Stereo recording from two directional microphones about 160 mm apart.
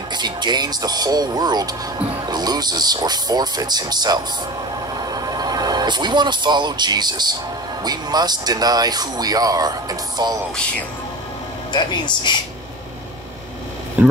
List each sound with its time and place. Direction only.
0.1 s speech: 25° right (ahead or behind)
4.9 s a sound: 25° right (ahead or behind)
7.8 s speech: 25° right (ahead or behind)
11.7 s speech: 30° left (ahead or behind)
14.0 s speech: 10° right (ahead or behind)